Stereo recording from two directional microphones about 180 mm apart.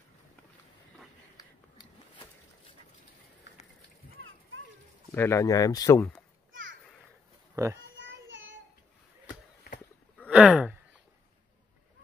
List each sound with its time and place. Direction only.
1.3 s a sound: 25° left (ahead or behind)
5.1 s speech: 15° left (ahead or behind)
6.5 s children playing: 90° right
7.5 s speech: 15° right (ahead or behind)
8.0 s child singing: 90° right
10.3 s a sound: 5° right (ahead or behind)